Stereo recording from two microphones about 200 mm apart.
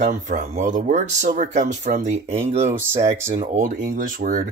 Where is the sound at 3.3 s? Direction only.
40° right (ahead or behind).